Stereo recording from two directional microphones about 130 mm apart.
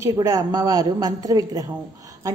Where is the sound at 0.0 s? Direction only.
25° right (ahead or behind).